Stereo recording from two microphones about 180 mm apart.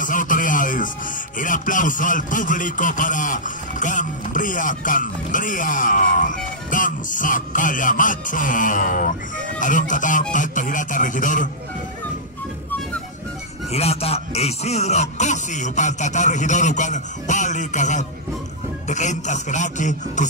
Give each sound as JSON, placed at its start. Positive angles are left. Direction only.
{"t": 0.0, "sound": "music", "side_deg": 45}
{"t": 1.4, "sound": "a man's voice", "side_deg": 45}
{"t": 13.7, "sound": "a man's voice", "side_deg": 35}